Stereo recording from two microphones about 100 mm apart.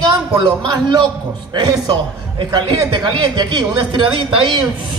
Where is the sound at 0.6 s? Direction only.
50° right (ahead or behind).